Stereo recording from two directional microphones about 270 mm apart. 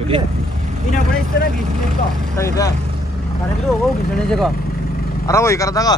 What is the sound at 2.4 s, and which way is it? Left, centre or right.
Speech, centre.